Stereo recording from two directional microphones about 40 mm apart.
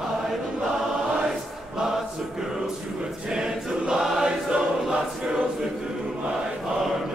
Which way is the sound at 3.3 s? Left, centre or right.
Centre.